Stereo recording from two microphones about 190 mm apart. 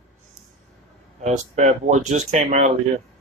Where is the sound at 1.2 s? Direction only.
35° right (ahead or behind).